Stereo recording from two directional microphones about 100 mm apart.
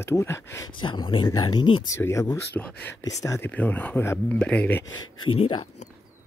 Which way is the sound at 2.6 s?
10° left (ahead or behind).